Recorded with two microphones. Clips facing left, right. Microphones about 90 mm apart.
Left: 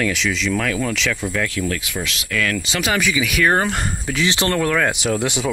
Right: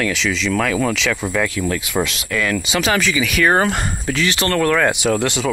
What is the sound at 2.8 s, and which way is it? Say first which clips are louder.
Speech: even; 5° left (ahead or behind).